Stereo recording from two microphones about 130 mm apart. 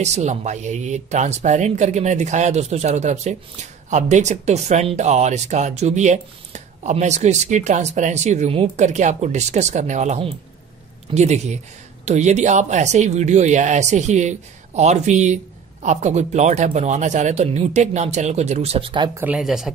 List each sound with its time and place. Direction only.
0.0 s speech: 60° right (ahead or behind); by 19.0 s 40° right (ahead or behind)
19.1 s speech: 10° right (ahead or behind)